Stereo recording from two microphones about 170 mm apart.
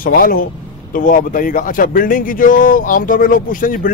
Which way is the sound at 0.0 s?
60° left (ahead or behind).